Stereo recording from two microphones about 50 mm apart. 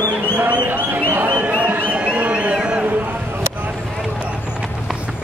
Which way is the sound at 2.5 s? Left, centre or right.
Centre.